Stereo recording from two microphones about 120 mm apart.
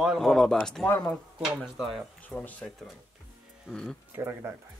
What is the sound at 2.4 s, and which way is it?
Speech, 15° left (ahead or behind).